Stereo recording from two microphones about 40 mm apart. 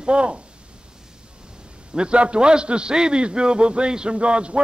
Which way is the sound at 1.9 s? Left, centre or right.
Right.